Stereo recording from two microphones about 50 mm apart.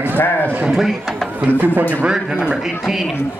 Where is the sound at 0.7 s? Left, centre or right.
Centre.